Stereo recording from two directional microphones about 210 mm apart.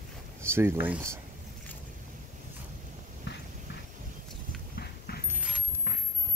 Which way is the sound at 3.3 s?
55° left (ahead or behind).